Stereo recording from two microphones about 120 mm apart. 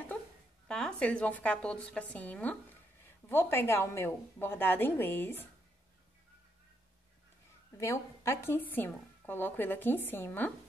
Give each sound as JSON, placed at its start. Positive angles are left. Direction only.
{"t": 0.7, "sound": "a woman's voice", "side_deg": 5}
{"t": 7.7, "sound": "a woman's voice", "side_deg": 25}